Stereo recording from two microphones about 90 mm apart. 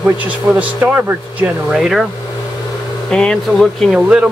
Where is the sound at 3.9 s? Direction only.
15° right (ahead or behind).